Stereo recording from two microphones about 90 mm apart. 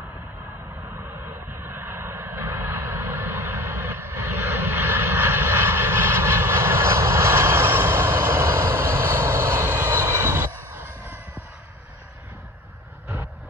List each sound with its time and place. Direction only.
0.9 s vehicle: 25° right (ahead or behind)